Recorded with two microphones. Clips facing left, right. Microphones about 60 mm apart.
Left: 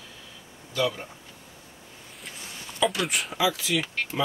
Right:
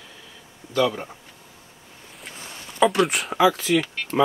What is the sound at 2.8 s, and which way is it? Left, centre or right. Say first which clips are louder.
Speech: right 7 dB; right.